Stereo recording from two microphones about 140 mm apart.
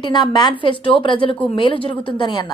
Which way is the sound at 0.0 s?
30° left (ahead or behind).